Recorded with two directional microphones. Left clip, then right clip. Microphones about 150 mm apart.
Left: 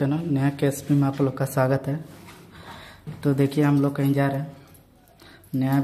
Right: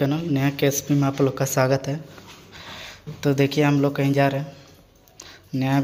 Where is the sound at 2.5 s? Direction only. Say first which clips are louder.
Right 6 dB; centre (ahead or behind).